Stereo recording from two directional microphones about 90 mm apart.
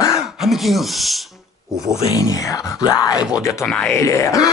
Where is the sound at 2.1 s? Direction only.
40° left (ahead or behind).